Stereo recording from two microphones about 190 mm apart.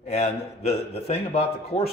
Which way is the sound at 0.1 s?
35° left (ahead or behind).